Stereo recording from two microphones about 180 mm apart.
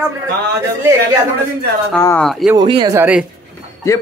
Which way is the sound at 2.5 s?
25° right (ahead or behind).